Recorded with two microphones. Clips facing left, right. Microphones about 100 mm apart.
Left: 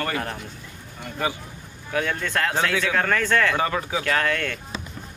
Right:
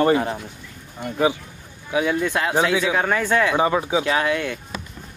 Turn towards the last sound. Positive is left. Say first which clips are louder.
# right 3 dB
turn(degrees=-15)  # may be behind; listen again after turning